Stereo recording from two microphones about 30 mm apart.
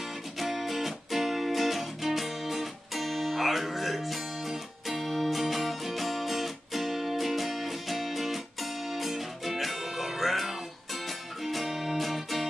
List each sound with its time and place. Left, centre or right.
0.4 s music: centre